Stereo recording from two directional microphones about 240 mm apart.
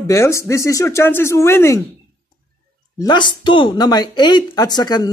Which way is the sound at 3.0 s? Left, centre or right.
Centre.